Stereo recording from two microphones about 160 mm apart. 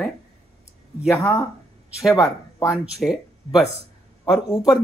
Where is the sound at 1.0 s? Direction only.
20° left (ahead or behind).